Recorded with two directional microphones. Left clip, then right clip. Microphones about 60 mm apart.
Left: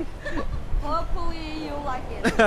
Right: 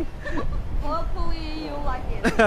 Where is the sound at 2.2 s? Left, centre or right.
Right.